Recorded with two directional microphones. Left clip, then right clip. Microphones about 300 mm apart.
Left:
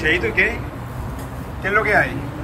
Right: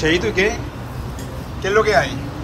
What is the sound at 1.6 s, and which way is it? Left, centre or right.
Speech, centre.